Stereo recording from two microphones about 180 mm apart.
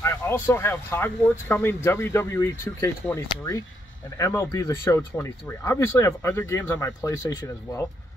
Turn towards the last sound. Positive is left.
turn(degrees=15)  # may be behind; listen again after turning